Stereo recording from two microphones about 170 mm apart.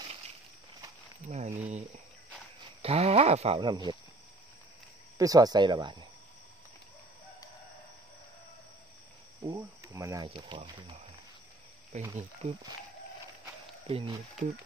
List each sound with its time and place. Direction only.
1.3 s speech: 40° right (ahead or behind)
2.8 s speech: 35° right (ahead or behind)
5.1 s speech: 20° right (ahead or behind)
9.4 s speech: 20° right (ahead or behind)
10.2 s speech: 30° right (ahead or behind)
11.9 s speech: 45° right (ahead or behind)
13.8 s speech: 30° right (ahead or behind)